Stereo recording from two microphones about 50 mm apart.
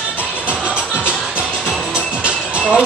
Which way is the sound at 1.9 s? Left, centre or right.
Centre.